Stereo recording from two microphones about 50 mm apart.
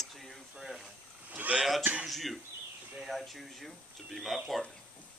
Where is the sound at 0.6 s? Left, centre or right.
Centre.